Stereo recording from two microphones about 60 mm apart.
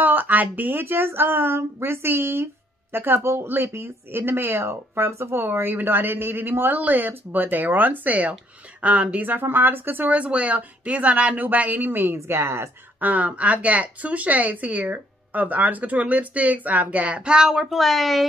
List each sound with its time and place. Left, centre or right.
0.0 s speech: right
10.1 s speech: right
12.2 s speech: right
13.0 s speech: right; by 18.2 s centre